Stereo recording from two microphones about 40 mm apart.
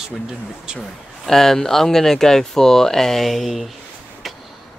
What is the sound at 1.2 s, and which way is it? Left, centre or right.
Speech, centre.